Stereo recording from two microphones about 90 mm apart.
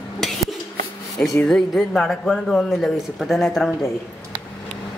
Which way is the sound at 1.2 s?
15° left (ahead or behind).